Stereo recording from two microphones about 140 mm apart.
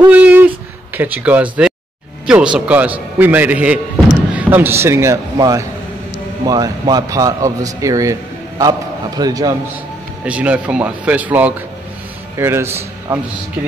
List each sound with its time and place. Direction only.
0.0 s a sound: 10° right (ahead or behind)
0.9 s a man's voice: 10° right (ahead or behind)
10.2 s a man's voice: 10° right (ahead or behind)